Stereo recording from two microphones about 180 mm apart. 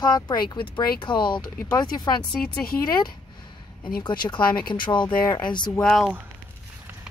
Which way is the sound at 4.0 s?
25° left (ahead or behind).